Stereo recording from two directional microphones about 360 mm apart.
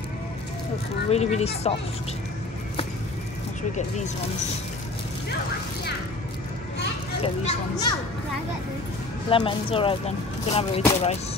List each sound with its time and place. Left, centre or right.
1.1 s speech: centre
7.4 s speech: centre
9.3 s speech: centre